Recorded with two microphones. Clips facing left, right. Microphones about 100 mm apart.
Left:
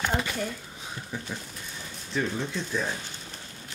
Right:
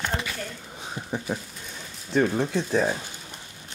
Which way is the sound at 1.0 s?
20° right (ahead or behind).